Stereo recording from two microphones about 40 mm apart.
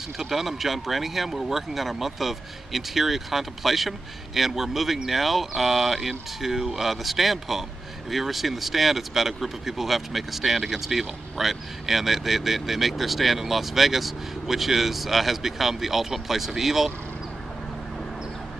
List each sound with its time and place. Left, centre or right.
0.2 s speech: centre